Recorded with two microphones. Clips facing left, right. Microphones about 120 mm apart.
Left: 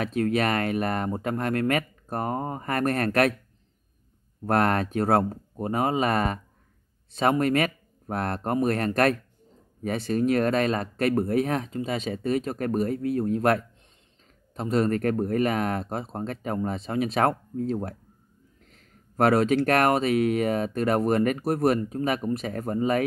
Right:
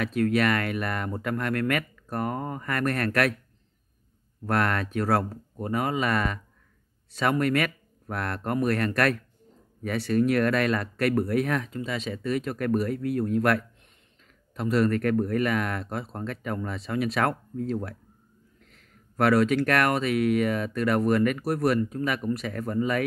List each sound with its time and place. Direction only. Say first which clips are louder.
0.2 s speech: right 1 dB; 35° left (ahead or behind)
4.5 s speech: left 3 dB; 40° left (ahead or behind)
5.3 s speech: left 1 dB; 30° left (ahead or behind)
21.4 s speech: left 2 dB; 50° left (ahead or behind)
21.7 s speech: left 1 dB; 35° left (ahead or behind)